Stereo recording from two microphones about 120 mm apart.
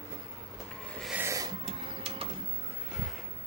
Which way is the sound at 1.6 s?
50° right (ahead or behind).